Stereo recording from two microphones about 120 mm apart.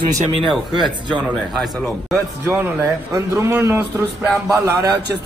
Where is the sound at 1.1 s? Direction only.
5° right (ahead or behind).